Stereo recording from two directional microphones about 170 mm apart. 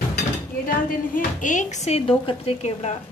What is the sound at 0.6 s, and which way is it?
A woman's voice, 50° left (ahead or behind).